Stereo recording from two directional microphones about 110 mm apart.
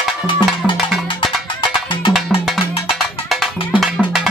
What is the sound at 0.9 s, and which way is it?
Music, centre (ahead or behind).